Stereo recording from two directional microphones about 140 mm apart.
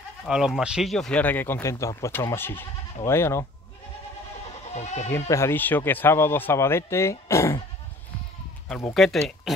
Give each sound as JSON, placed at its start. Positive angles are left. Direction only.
{"t": 0.3, "sound": "speech", "side_deg": -5}
{"t": 4.6, "sound": "speech", "side_deg": 50}
{"t": 5.3, "sound": "speech", "side_deg": 15}
{"t": 8.9, "sound": "speech", "side_deg": 0}